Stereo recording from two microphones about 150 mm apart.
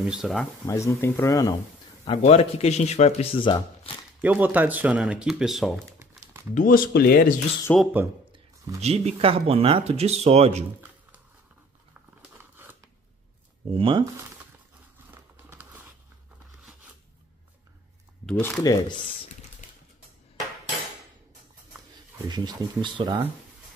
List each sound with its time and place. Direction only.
0.0 s speech: 5° right (ahead or behind)
0.7 s speech: 20° left (ahead or behind)
2.0 s speech: 45° left (ahead or behind)
4.2 s speech: 10° right (ahead or behind)
6.5 s speech: 65° left (ahead or behind); by 7.3 s 90° left
7.7 s speech: 15° left (ahead or behind)
8.8 s speech: 45° right (ahead or behind)
12.6 s scissors: 15° right (ahead or behind)
13.7 s speech: 35° right (ahead or behind)
15.0 s crumpling: 15° right (ahead or behind)
18.2 s speech: 5° left (ahead or behind)
18.6 s speech: 25° left (ahead or behind)
22.3 s speech: 30° right (ahead or behind)